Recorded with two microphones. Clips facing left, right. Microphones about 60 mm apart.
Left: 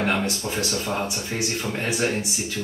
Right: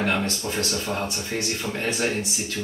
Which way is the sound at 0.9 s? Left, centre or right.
Centre.